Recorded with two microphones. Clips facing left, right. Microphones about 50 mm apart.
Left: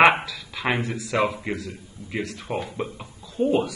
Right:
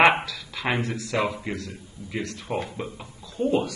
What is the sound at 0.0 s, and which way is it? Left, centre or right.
A man's voice, centre.